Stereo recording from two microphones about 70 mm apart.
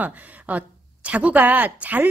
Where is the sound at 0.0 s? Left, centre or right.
Right.